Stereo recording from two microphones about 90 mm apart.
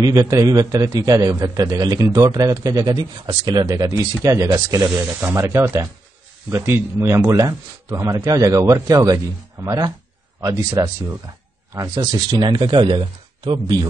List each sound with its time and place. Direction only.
0.0 s a man's voice: 40° right (ahead or behind)
12.7 s speech: 70° right (ahead or behind); by 13.8 s 55° right (ahead or behind)